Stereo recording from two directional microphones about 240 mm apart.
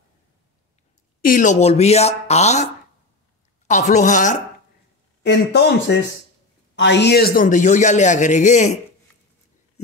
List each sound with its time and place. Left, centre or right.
1.2 s a man's voice: left
5.2 s a man's voice: left